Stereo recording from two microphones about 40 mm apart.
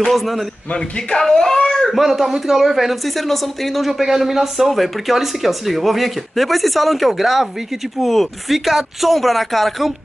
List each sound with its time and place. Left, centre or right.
0.1 s a woman's voice: centre
0.7 s speech: centre
1.8 s a woman's voice: centre